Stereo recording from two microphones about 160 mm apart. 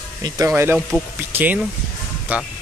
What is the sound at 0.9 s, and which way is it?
Speech, 10° left (ahead or behind).